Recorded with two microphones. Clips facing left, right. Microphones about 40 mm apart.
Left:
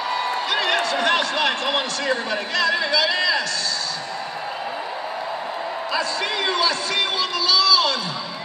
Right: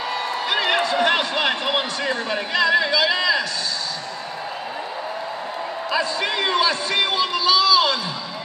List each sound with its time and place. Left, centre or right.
0.5 s speech: centre
5.9 s speech: right